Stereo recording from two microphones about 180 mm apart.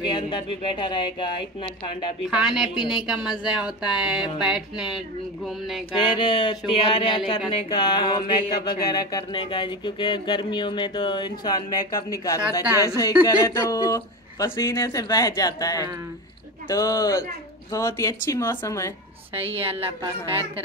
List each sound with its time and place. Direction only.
0.0 s speech: 25° left (ahead or behind)
2.2 s speech: 5° right (ahead or behind)
5.9 s speech: 30° left (ahead or behind)
19.3 s a woman's voice: 30° right (ahead or behind)